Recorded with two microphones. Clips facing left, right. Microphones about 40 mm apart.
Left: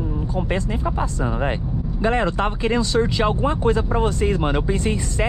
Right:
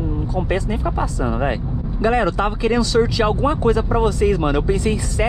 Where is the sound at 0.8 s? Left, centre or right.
Right.